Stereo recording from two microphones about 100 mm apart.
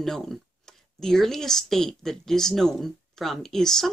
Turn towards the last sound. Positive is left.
turn(degrees=5)  # may be behind; listen again after turning